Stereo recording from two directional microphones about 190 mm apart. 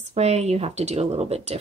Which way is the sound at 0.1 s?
35° right (ahead or behind).